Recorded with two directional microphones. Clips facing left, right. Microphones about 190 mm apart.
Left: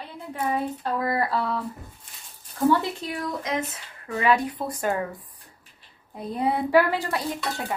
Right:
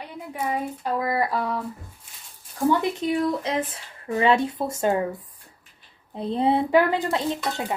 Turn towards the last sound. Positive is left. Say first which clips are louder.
# right 3 dB
turn(degrees=-20)  # may be behind; listen again after turning